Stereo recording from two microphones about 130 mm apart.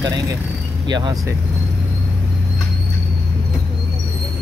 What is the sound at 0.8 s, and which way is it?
Speech, 35° right (ahead or behind).